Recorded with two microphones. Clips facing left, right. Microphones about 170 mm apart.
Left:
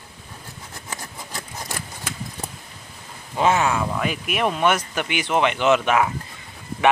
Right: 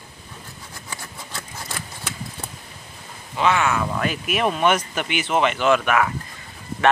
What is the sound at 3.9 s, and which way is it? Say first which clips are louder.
Speech: right 1 dB; 10° left (ahead or behind).